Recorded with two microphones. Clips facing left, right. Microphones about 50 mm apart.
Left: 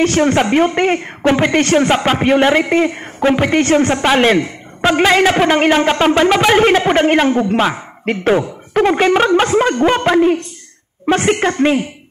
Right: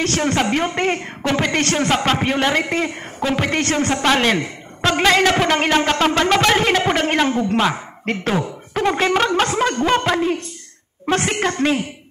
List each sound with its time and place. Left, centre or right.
0.0 s a man's voice: left